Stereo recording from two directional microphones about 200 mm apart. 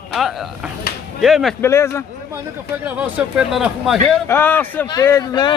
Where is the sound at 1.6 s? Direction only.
15° left (ahead or behind).